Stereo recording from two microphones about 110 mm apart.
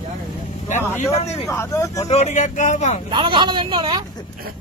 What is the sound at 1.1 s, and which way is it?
Speech, 75° left (ahead or behind).